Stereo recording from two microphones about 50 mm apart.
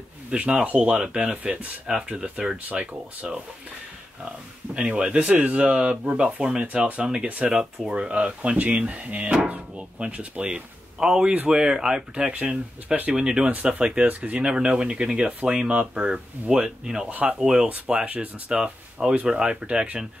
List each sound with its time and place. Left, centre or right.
0.3 s speech: right
4.7 s speech: centre
11.0 s speech: centre
12.3 s speech: right
13.1 s speech: centre
14.4 s speech: centre
18.5 s speech: centre